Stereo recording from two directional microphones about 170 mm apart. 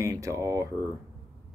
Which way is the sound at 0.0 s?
20° right (ahead or behind).